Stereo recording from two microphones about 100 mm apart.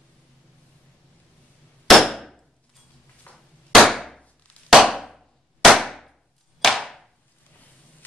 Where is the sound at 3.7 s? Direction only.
Centre (ahead or behind).